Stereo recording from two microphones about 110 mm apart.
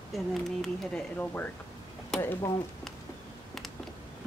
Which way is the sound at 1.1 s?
15° left (ahead or behind).